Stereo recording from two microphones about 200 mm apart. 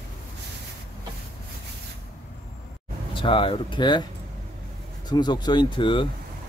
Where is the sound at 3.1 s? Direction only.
25° left (ahead or behind).